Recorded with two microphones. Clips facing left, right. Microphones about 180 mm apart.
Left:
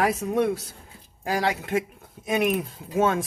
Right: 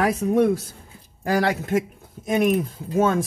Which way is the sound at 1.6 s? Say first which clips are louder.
Right 3 dB; 40° right (ahead or behind).